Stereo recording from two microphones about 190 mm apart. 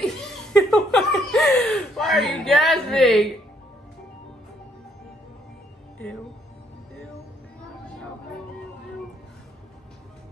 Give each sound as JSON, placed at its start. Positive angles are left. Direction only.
{"t": 0.0, "sound": "laughter", "side_deg": 0}